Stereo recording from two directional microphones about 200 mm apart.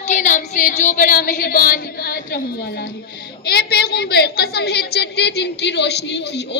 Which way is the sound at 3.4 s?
50° left (ahead or behind).